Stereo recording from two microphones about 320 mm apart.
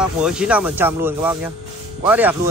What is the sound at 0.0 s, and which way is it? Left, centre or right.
Speech, centre.